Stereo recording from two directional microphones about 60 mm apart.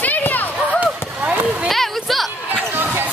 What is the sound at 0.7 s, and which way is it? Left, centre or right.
Basketball bounce, right.